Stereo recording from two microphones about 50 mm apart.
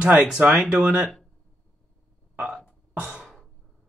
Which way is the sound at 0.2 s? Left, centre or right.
Right.